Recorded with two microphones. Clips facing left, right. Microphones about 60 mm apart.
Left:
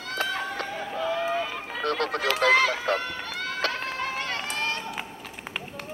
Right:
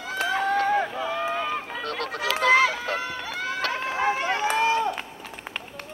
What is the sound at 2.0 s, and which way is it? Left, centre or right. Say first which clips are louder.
Speech: left 1 dB; centre.